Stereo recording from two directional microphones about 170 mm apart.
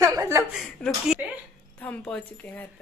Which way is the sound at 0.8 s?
5° left (ahead or behind).